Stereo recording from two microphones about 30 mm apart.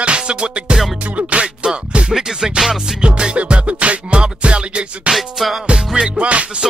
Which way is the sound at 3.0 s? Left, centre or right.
Right.